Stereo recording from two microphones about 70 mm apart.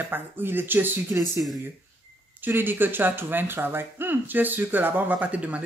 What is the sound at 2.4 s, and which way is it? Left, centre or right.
Speech, right.